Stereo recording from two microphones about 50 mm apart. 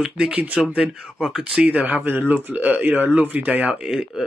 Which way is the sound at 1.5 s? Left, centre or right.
Right.